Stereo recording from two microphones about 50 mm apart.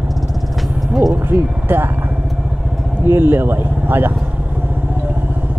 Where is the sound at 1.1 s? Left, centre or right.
Right.